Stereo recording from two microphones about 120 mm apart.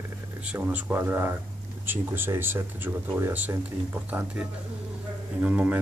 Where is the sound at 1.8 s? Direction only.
15° right (ahead or behind).